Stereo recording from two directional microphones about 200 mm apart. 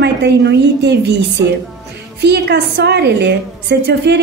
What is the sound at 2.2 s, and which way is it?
A woman's voice, 55° right (ahead or behind).